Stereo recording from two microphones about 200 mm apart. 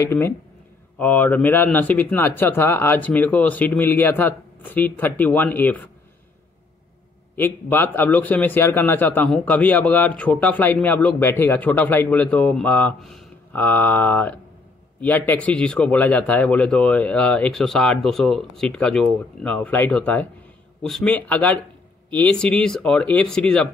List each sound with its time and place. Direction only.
0.0 s a man's voice: 10° left (ahead or behind)
7.3 s a man's voice: 10° left (ahead or behind)